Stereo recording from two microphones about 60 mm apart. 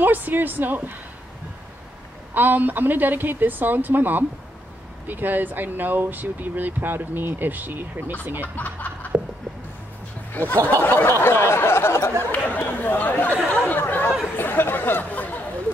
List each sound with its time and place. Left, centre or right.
0.0 s speech: right
2.3 s speech: right
10.3 s speech: left
10.8 s a sound: left
11.1 s speech: left
12.3 s chatter: left